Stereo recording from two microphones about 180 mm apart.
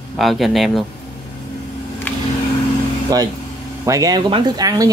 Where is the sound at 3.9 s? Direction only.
20° right (ahead or behind).